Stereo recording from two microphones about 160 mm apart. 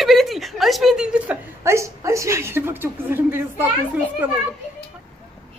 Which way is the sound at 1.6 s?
20° right (ahead or behind).